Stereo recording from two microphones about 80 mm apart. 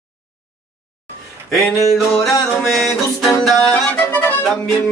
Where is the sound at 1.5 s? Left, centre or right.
Centre.